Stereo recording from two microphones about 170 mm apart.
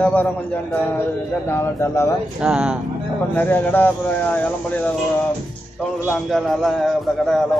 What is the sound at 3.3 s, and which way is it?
Speech, 10° left (ahead or behind).